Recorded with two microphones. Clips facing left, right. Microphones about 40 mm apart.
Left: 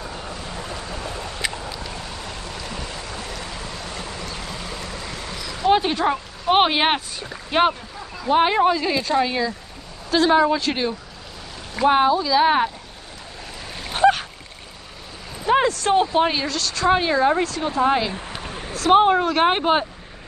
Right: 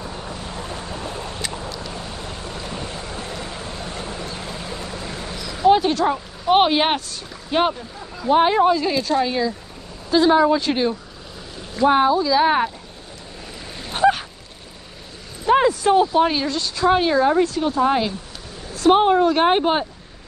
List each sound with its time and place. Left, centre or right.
5.0 s dog: centre
5.4 s a sound: centre
5.7 s speech: centre
13.8 s boat: centre
15.5 s a sound: centre
15.9 s speech: left
16.4 s a woman's voice: centre
16.8 s speech: centre
18.1 s a sound: left
18.7 s speech: centre